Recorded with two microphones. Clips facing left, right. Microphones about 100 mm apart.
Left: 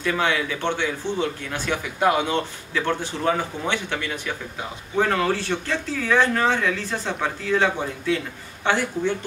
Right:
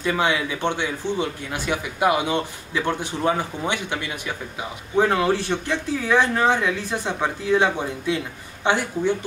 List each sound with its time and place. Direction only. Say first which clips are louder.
0.0 s speech: right 1 dB; 15° right (ahead or behind)